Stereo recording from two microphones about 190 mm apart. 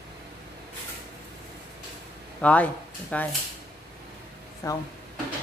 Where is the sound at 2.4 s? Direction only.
5° left (ahead or behind).